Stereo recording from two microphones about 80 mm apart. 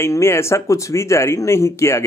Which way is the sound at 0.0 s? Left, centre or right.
Left.